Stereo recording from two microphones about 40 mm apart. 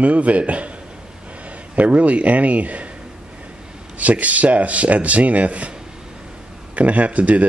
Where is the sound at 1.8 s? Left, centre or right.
Right.